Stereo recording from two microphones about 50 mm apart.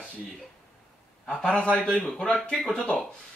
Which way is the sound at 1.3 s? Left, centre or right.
Centre.